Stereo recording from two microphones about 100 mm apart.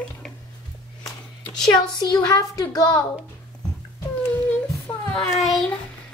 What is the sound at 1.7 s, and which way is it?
A woman's voice, 45° left (ahead or behind).